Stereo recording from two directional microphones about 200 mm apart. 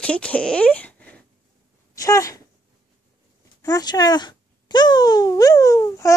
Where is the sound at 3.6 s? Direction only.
20° left (ahead or behind).